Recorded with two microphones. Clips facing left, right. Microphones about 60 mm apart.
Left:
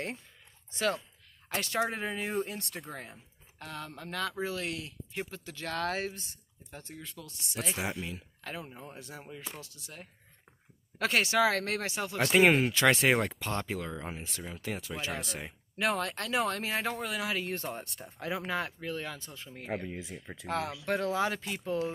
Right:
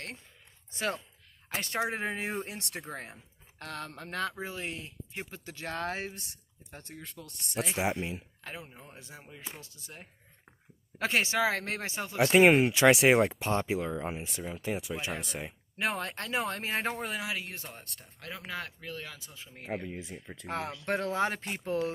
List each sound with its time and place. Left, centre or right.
0.7 s speech: right
1.9 s speech: right
2.5 s speech: right
2.9 s speech: right
3.5 s speech: right
4.4 s speech: right
6.7 s speech: right
7.6 s speech: right
8.6 s speech: centre
8.9 s speech: centre
15.8 s speech: right
17.2 s speech: centre
17.5 s speech: centre
20.4 s speech: right